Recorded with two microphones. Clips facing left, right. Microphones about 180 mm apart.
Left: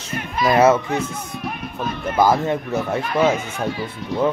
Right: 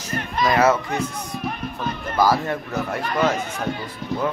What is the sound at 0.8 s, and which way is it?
Speech, 5° left (ahead or behind).